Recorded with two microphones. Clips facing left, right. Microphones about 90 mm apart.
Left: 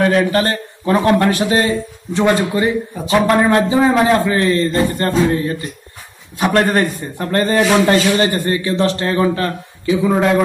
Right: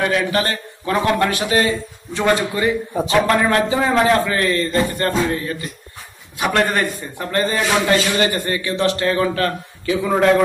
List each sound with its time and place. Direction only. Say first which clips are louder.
0.0 s a man's voice: left 5 dB; 35° left (ahead or behind)
10.0 s a man's voice: even; 5° left (ahead or behind)